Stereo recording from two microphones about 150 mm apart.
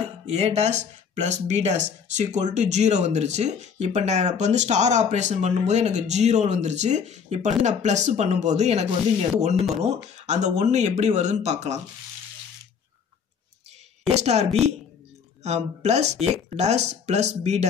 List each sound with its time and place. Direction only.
0.3 s speech: 45° right (ahead or behind)
14.1 s speech: 45° right (ahead or behind)